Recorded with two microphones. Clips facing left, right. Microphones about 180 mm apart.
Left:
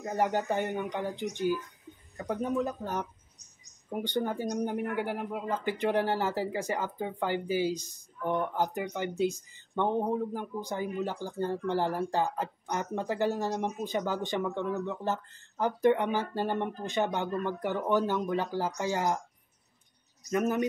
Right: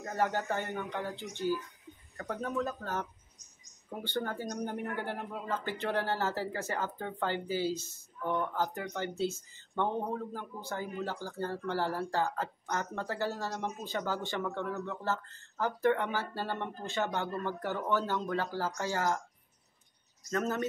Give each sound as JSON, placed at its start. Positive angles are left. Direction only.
{"t": 0.0, "sound": "speech", "side_deg": 15}
{"t": 20.2, "sound": "speech", "side_deg": 15}